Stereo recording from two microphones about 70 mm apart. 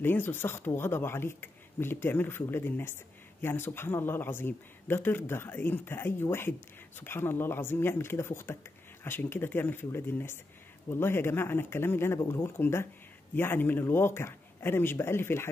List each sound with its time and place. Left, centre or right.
0.0 s speech: left
12.5 s speech: left